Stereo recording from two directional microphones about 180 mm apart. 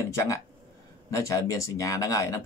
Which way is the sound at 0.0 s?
15° left (ahead or behind).